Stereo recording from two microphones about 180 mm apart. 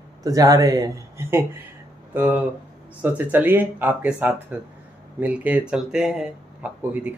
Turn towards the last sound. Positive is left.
turn(degrees=-10)  # may be behind; listen again after turning